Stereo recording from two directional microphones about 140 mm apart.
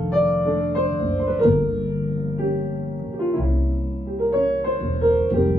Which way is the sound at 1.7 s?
30° right (ahead or behind).